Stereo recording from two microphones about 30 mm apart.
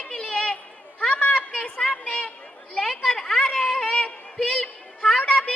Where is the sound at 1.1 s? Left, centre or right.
Left.